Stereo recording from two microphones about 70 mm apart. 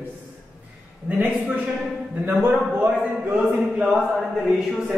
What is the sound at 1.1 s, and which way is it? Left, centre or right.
Speech, centre.